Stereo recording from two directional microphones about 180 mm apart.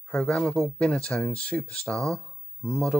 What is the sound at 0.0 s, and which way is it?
Speech, 10° left (ahead or behind).